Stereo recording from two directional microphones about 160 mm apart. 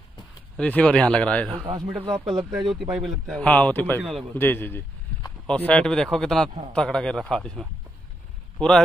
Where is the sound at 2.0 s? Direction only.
30° right (ahead or behind).